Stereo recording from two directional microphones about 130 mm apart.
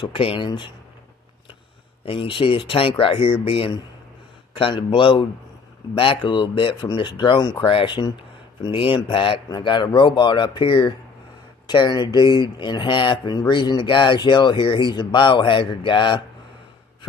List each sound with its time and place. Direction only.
0.0 s speech: 40° left (ahead or behind)
2.0 s speech: 40° left (ahead or behind)